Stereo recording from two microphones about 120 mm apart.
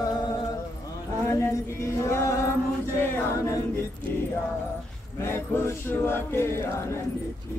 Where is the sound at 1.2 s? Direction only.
20° left (ahead or behind).